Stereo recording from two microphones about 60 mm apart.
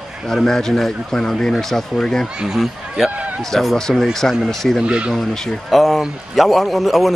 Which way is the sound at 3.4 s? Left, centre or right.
Centre.